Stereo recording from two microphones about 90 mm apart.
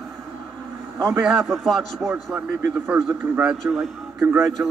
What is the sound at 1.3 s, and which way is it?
Speech, centre (ahead or behind).